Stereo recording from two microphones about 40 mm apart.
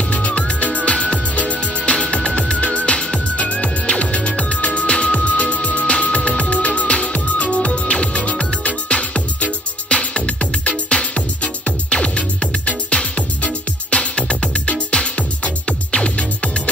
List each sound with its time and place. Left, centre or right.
0.7 s music: left
5.4 s music: left